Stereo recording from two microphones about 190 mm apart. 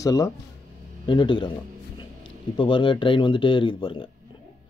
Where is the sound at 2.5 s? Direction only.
25° left (ahead or behind).